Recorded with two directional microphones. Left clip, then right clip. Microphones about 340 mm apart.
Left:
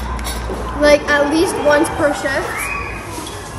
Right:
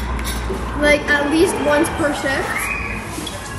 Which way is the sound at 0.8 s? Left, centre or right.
Centre.